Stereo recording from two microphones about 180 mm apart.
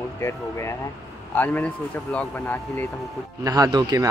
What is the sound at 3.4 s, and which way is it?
Speech, 20° right (ahead or behind).